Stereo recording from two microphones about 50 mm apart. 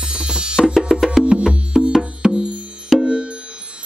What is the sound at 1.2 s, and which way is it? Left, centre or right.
Music, centre.